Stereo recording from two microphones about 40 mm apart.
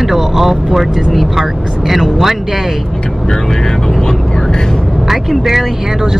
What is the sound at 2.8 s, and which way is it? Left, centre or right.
Speech, centre.